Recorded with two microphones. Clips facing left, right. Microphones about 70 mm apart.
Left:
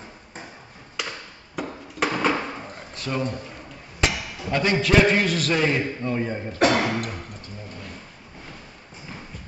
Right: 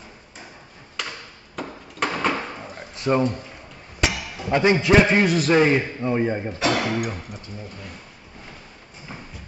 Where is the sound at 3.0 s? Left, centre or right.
Right.